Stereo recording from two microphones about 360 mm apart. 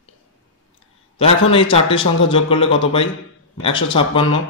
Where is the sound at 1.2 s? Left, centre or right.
Centre.